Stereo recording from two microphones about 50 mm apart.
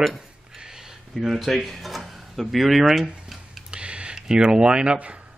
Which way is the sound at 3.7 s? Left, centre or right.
Right.